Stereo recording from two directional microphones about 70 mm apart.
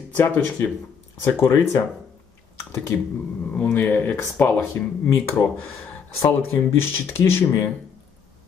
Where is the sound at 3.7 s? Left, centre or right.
Left.